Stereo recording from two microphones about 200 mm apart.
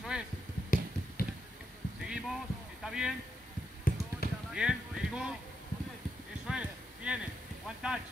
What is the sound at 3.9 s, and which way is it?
Basketball bounce, 45° left (ahead or behind).